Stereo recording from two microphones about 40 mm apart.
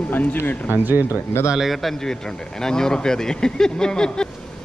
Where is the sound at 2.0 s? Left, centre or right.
Centre.